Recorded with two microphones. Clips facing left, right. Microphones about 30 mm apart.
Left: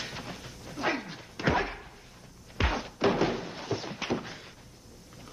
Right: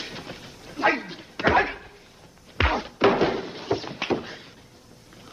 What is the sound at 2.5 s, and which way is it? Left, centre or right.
Thunk, right.